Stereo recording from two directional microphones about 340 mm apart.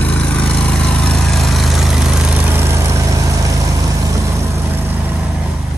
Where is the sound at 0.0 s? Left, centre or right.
Centre.